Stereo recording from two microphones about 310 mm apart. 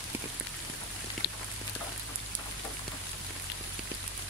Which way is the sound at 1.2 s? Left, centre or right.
Left.